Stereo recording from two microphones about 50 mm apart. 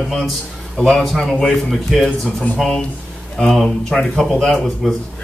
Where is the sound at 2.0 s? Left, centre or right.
Left.